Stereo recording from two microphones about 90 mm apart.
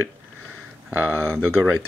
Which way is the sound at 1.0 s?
10° left (ahead or behind).